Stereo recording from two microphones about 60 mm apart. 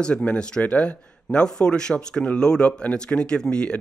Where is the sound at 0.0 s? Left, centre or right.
Centre.